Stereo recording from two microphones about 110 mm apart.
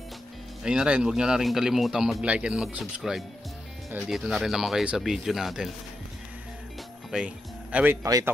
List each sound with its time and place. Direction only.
0.7 s speech: 10° right (ahead or behind)
7.1 s speech: 10° right (ahead or behind)
8.0 s speech: 30° right (ahead or behind)